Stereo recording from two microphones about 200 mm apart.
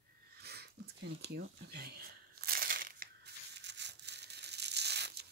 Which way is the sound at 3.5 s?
60° right (ahead or behind).